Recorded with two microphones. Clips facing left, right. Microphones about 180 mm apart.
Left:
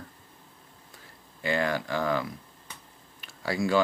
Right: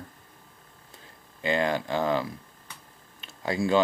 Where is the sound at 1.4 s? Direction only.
20° right (ahead or behind).